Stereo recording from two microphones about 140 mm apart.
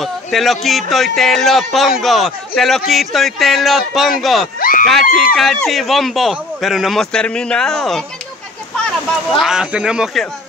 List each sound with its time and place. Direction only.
0.0 s speech: centre (ahead or behind)
4.6 s a sound: 90° left
4.8 s speech: centre (ahead or behind)
9.4 s speech: 5° right (ahead or behind)